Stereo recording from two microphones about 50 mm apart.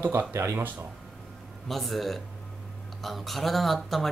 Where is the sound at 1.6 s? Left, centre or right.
Centre.